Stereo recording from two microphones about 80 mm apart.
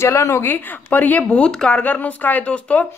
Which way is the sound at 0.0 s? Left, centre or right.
Left.